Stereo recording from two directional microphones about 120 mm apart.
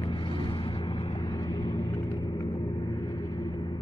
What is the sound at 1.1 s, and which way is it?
Vehicle, 35° left (ahead or behind).